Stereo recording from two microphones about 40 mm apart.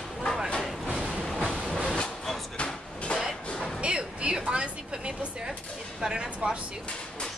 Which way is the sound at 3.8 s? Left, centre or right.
Right.